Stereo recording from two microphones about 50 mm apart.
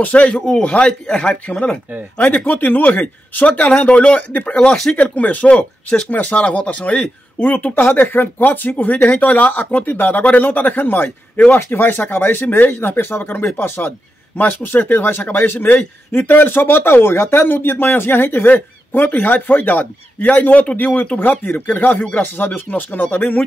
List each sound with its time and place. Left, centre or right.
0.0 s speech: left
2.1 s speech: left
4.9 s speech: left
7.3 s speech: left